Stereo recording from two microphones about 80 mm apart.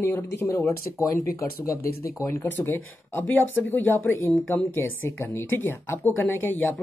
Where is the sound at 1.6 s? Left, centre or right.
Left.